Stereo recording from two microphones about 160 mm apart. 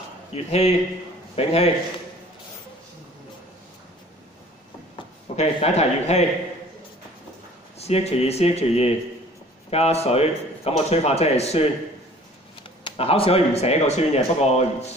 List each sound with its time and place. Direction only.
0.3 s a man's voice: 40° left (ahead or behind)
5.3 s speech: 45° left (ahead or behind)
7.8 s speech: 40° left (ahead or behind)
12.8 s speech: 35° left (ahead or behind)